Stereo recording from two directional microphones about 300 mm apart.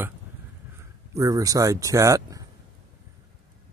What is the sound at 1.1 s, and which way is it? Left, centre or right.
Speech, centre.